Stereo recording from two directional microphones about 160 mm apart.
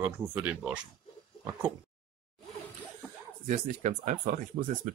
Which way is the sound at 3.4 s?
50° right (ahead or behind).